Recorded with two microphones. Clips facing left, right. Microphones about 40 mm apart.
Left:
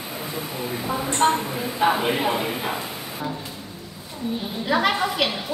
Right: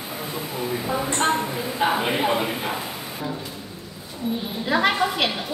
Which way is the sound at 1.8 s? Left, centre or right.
Centre.